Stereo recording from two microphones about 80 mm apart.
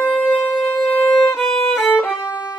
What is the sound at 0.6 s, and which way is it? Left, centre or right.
Violin, centre.